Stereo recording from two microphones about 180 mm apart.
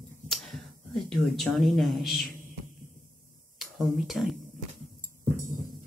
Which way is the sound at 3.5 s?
Centre (ahead or behind).